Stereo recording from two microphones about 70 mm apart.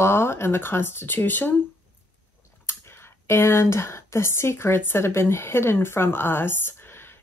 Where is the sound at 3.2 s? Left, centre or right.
Left.